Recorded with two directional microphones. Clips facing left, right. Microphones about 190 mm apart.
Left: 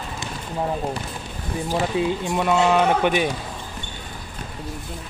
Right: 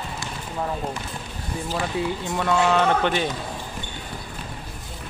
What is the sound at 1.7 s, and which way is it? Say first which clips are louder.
Speech: left 4 dB; 20° left (ahead or behind).